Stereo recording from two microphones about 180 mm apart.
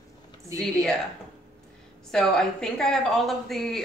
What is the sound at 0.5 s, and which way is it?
Speech, 20° right (ahead or behind).